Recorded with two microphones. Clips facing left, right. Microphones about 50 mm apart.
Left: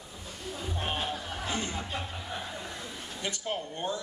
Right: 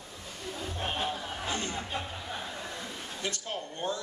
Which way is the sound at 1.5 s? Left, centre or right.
Centre.